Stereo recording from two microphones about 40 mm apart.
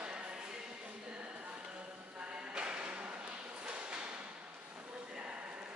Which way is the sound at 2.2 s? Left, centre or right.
Right.